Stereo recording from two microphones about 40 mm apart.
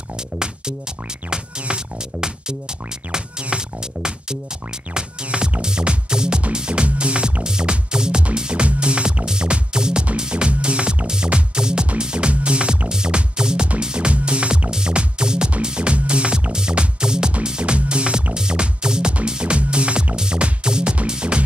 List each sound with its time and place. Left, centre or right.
1.3 s music: centre